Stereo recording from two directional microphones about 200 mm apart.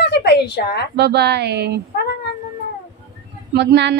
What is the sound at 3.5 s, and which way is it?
Speech, 60° right (ahead or behind).